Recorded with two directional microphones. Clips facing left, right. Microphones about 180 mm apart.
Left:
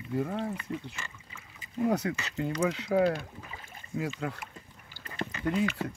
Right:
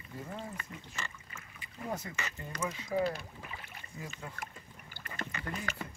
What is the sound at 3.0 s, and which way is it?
Speech, 55° left (ahead or behind).